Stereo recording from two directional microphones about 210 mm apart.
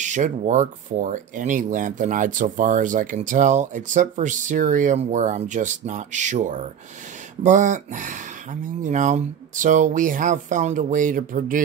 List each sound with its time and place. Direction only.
0.0 s speech: 35° right (ahead or behind)